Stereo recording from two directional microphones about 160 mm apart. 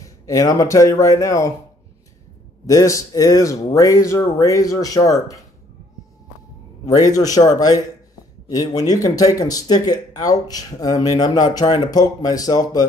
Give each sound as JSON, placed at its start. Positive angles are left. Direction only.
{"t": 0.0, "sound": "speech", "side_deg": 20}
{"t": 2.6, "sound": "speech", "side_deg": 20}
{"t": 6.9, "sound": "speech", "side_deg": 20}